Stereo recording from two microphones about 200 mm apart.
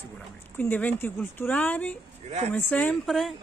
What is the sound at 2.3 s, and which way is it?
Speech, 35° right (ahead or behind).